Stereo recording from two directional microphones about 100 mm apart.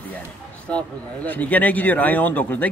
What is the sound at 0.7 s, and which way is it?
A man's voice, 10° left (ahead or behind).